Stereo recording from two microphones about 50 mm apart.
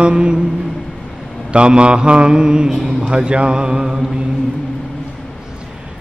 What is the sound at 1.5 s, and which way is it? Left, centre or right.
Mantra, right.